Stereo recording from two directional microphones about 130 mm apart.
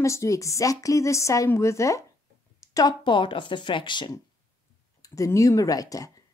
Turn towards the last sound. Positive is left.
turn(degrees=25)  # may be behind; listen again after turning